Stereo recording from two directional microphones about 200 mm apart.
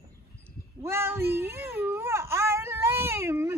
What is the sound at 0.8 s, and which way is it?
Speech, 10° right (ahead or behind).